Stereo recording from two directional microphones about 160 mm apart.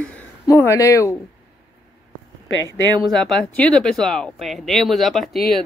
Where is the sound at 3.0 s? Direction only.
Centre (ahead or behind).